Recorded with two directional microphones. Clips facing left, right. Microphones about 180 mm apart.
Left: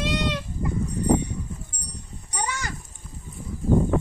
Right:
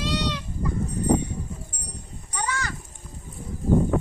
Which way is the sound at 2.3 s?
15° left (ahead or behind).